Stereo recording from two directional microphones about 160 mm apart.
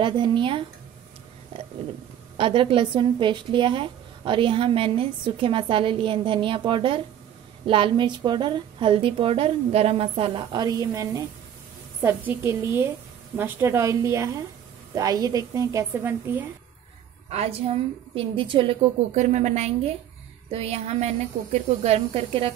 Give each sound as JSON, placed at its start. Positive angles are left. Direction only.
{"t": 0.0, "sound": "a woman's voice", "side_deg": -30}
{"t": 2.3, "sound": "a woman's voice", "side_deg": -35}
{"t": 17.3, "sound": "a woman's voice", "side_deg": -40}
{"t": 19.1, "sound": "a woman's voice", "side_deg": -50}